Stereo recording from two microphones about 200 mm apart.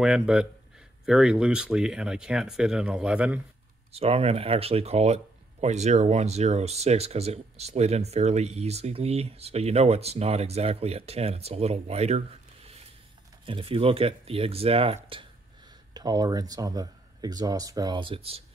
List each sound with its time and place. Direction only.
0.0 s speech: 5° right (ahead or behind)
3.9 s speech: 30° right (ahead or behind)
13.5 s speech: 25° right (ahead or behind)